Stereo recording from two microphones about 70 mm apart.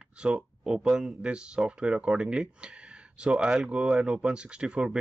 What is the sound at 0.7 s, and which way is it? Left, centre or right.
Speech, centre.